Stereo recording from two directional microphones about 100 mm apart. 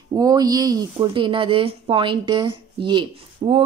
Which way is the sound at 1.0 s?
55° right (ahead or behind).